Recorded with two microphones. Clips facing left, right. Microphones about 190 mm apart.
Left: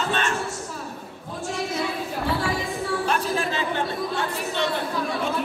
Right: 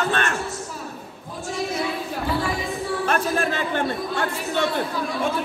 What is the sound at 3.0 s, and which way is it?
Speech, 55° right (ahead or behind).